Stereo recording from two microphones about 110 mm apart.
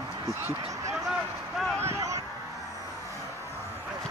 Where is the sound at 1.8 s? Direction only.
25° right (ahead or behind).